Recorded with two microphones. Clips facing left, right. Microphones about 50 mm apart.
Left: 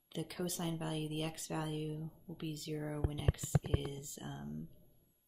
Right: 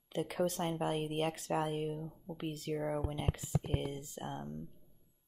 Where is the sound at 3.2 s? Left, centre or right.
Right.